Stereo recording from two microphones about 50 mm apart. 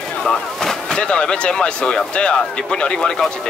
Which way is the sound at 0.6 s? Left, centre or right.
Centre.